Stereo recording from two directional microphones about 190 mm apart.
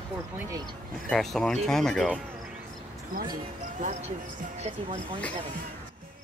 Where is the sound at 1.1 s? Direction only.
Centre (ahead or behind).